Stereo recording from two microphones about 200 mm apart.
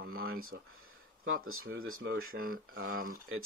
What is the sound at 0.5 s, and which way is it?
Speech, 90° right.